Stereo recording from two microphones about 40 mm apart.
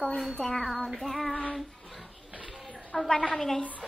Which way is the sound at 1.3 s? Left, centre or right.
Left.